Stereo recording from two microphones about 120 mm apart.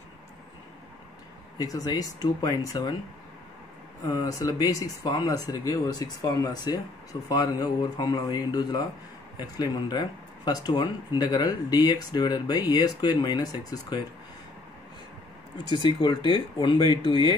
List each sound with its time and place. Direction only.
1.6 s speech: 30° left (ahead or behind)
4.0 s speech: 35° left (ahead or behind)
15.5 s speech: 40° left (ahead or behind)